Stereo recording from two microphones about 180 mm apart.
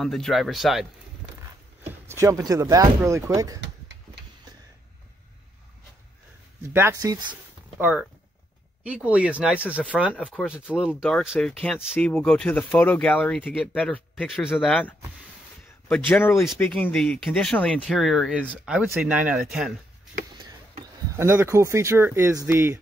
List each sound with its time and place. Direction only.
0.0 s speech: centre (ahead or behind)
1.9 s speech: 15° right (ahead or behind)
3.6 s a sound: 75° right (ahead or behind)
6.7 s speech: 15° right (ahead or behind)
7.8 s speech: 10° right (ahead or behind)
14.2 s speech: 5° right (ahead or behind)
16.1 s speech: 10° left (ahead or behind); by 19.7 s 5° right (ahead or behind)
21.2 s speech: 15° right (ahead or behind)